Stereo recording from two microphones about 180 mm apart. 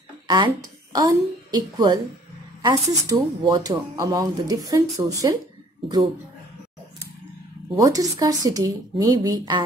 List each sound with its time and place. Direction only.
0.3 s a woman's voice: 20° right (ahead or behind)
7.7 s speech: 20° right (ahead or behind)